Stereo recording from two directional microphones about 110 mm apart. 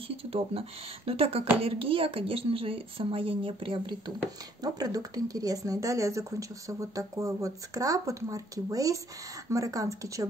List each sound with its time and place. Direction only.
0.2 s a woman's voice: 60° right (ahead or behind)
4.6 s speech: 35° right (ahead or behind)